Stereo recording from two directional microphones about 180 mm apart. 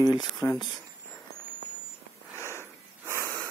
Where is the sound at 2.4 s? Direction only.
15° left (ahead or behind).